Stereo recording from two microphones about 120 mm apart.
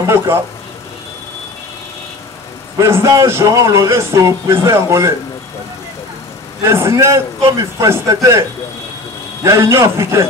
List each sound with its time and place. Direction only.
0.0 s a man's voice: 20° right (ahead or behind)
2.8 s a man's voice: 25° right (ahead or behind)
6.6 s a man's voice: 20° right (ahead or behind)